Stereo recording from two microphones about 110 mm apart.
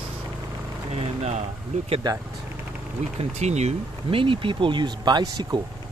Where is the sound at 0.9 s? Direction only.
75° right (ahead or behind).